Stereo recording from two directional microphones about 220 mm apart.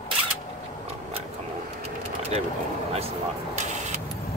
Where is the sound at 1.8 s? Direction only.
30° right (ahead or behind).